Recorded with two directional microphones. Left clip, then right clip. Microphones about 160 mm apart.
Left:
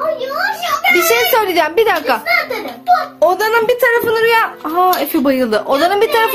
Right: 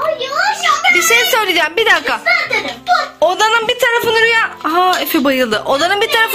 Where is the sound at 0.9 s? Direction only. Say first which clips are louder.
Even; 5° left (ahead or behind).